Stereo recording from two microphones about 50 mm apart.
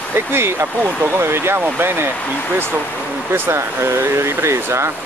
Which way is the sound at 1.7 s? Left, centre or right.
Right.